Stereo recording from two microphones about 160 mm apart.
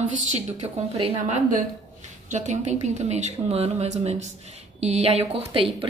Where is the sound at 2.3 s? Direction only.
50° right (ahead or behind).